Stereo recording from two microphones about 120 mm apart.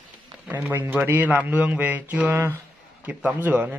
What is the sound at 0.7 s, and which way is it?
A man's voice, 20° right (ahead or behind).